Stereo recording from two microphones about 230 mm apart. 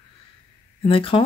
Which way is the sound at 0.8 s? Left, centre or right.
Left.